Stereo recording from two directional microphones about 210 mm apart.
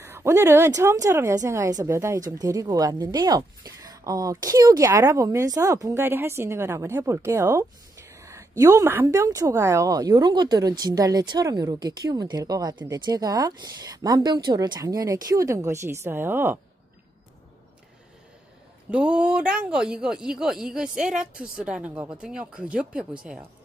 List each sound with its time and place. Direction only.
0.0 s speech: 10° right (ahead or behind)
18.9 s speech: 5° right (ahead or behind)